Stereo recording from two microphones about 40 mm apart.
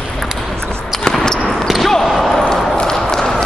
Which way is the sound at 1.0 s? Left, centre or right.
Centre.